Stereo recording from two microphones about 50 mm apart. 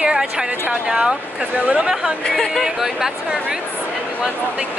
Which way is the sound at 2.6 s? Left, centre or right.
Centre.